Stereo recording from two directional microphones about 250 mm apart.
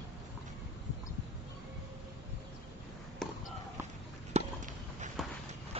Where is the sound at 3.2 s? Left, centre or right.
Centre.